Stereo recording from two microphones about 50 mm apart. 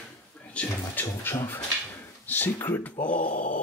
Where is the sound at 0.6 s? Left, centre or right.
Left.